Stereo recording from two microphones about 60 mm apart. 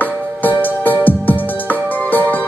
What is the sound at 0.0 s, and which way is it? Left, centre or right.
Music, left.